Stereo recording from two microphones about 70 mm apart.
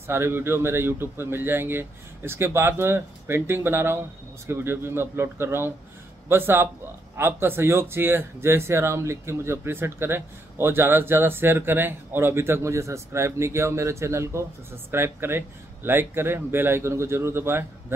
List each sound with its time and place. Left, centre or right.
0.0 s speech: right